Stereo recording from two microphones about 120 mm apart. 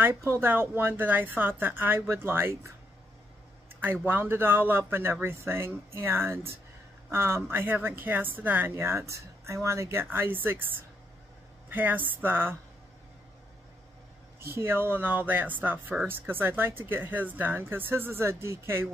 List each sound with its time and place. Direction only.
0.0 s speech: 20° right (ahead or behind)
3.8 s speech: 15° right (ahead or behind)
11.7 s speech: 15° right (ahead or behind)
14.5 s speech: 20° right (ahead or behind)